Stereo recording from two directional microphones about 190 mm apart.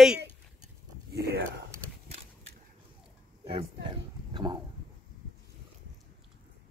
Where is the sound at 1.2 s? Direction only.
55° right (ahead or behind).